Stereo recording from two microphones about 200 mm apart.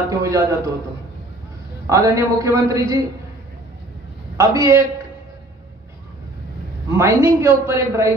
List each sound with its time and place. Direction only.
0.1 s a woman's voice: 15° right (ahead or behind)
1.9 s a woman's voice: 15° right (ahead or behind)
4.4 s a woman's voice: 15° right (ahead or behind)
7.0 s a woman's voice: 15° right (ahead or behind)